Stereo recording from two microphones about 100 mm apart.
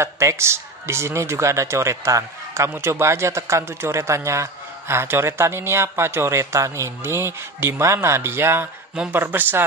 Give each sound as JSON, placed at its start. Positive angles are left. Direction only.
{"t": 0.0, "sound": "speech", "side_deg": -30}
{"t": 8.9, "sound": "speech", "side_deg": -10}